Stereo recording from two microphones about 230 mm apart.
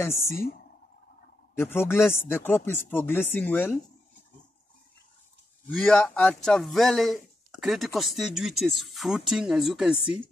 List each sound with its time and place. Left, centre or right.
0.3 s speech: left
1.6 s speech: centre
5.7 s speech: centre